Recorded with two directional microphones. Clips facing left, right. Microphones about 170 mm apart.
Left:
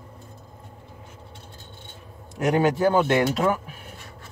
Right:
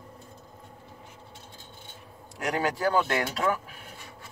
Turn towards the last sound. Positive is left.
turn(degrees=20)  # may be behind; listen again after turning